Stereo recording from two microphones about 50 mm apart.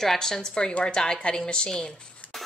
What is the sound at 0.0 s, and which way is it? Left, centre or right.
A woman's voice, centre.